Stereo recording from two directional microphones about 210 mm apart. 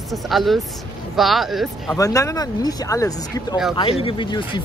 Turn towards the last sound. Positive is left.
turn(degrees=20)  # may be behind; listen again after turning